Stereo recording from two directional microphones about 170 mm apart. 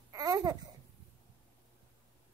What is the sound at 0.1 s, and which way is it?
Babbling, 20° right (ahead or behind).